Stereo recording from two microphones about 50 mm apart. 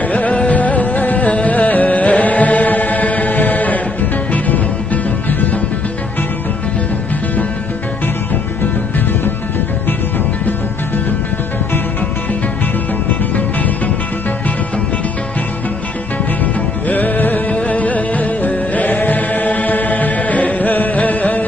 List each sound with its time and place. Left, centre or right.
0.1 s music: left
16.8 s music: left